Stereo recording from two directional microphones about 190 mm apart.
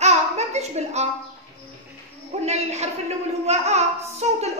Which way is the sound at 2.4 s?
35° right (ahead or behind).